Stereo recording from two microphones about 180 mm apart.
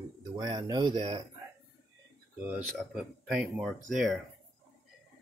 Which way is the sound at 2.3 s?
10° right (ahead or behind).